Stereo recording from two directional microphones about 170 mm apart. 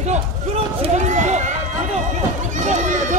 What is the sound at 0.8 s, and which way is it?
Run, 45° right (ahead or behind).